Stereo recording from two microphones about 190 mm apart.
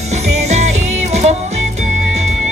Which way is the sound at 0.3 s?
35° right (ahead or behind).